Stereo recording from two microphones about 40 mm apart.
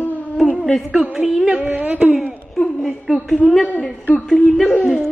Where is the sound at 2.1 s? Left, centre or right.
Centre.